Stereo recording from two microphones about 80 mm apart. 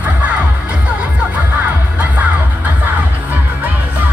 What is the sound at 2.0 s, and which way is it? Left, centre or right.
Music, centre.